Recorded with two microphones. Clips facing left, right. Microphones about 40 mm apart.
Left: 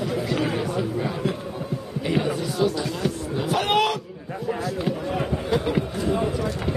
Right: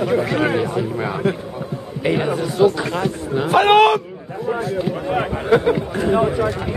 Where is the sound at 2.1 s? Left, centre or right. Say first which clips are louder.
Right 4 dB; right.